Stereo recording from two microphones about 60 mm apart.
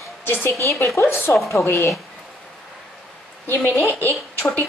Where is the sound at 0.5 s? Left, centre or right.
Left.